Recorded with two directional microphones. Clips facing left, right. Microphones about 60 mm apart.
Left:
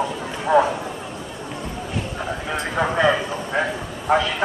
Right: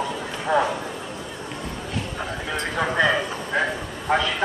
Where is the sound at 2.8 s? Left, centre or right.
Centre.